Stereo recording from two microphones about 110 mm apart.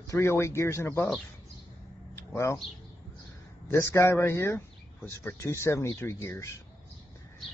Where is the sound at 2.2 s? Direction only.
25° left (ahead or behind).